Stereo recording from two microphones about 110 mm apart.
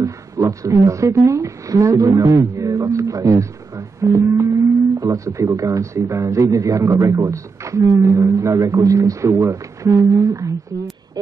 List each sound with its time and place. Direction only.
0.0 s speech: 30° right (ahead or behind)